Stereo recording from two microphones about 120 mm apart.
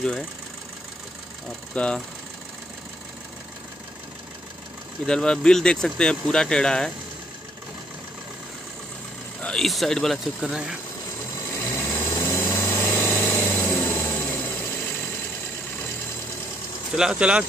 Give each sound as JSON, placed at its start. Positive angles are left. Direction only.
{"t": 1.8, "sound": "speech", "side_deg": 10}
{"t": 5.0, "sound": "speech", "side_deg": 5}
{"t": 9.4, "sound": "speech", "side_deg": 5}
{"t": 11.5, "sound": "engine", "side_deg": 20}
{"t": 16.9, "sound": "speech", "side_deg": -5}